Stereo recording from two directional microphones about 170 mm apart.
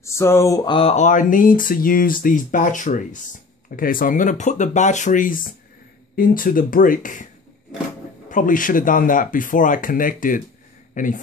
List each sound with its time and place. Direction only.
0.0 s speech: 15° left (ahead or behind); by 7.2 s 50° left (ahead or behind)
8.3 s speech: 50° left (ahead or behind)